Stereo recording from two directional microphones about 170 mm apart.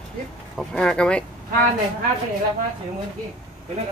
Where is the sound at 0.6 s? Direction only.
5° left (ahead or behind).